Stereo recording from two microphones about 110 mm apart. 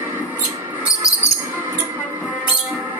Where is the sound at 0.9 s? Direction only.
30° left (ahead or behind).